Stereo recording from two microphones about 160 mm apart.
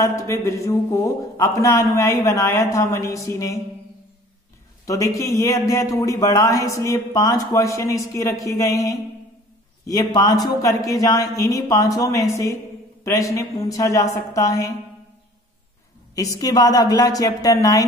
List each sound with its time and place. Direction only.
0.0 s a man's voice: 20° left (ahead or behind)
4.8 s a man's voice: 20° left (ahead or behind)
16.2 s a man's voice: 20° left (ahead or behind)